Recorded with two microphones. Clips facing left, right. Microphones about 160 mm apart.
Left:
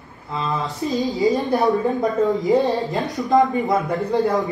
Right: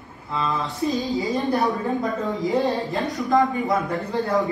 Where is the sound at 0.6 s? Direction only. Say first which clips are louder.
Left 2 dB; 20° left (ahead or behind).